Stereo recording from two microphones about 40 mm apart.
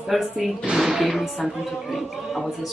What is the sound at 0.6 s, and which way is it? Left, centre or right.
Speech, centre.